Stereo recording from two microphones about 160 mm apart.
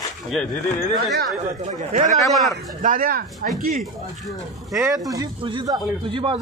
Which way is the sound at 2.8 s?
60° right (ahead or behind).